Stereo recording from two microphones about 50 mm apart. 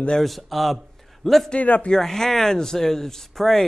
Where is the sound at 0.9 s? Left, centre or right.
Centre.